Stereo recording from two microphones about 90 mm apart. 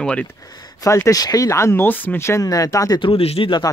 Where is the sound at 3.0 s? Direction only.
85° left.